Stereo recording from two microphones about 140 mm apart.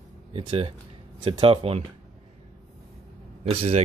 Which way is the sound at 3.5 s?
45° right (ahead or behind).